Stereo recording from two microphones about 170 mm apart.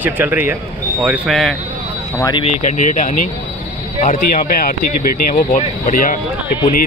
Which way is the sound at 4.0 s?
50° left (ahead or behind).